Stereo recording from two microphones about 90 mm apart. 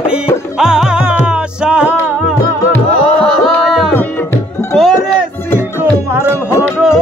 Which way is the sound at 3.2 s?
Centre (ahead or behind).